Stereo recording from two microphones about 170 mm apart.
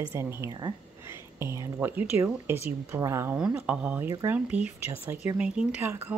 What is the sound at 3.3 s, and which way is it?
Speech, 5° right (ahead or behind).